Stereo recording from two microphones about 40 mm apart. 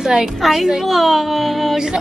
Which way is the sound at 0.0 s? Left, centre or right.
Centre.